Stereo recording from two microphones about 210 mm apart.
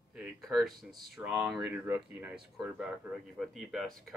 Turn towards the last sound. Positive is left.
turn(degrees=0)  # may be behind; listen again after turning